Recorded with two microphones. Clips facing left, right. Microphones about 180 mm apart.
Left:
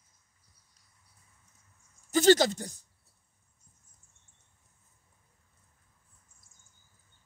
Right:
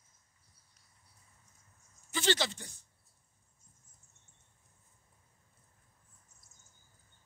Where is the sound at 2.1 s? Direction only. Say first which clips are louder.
Left 11 dB; 40° left (ahead or behind).